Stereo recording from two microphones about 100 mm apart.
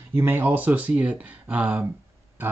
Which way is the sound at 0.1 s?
20° right (ahead or behind).